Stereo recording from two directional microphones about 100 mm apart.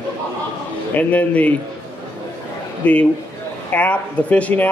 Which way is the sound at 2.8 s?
15° left (ahead or behind).